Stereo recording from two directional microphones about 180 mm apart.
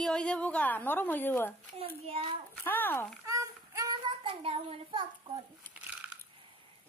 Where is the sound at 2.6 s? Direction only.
10° left (ahead or behind).